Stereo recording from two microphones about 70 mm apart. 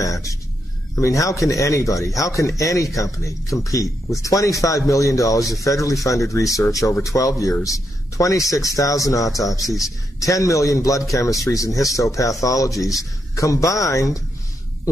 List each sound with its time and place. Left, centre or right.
0.0 s speech: left